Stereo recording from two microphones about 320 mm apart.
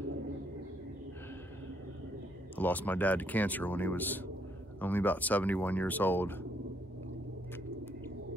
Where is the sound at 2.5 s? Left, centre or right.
Centre.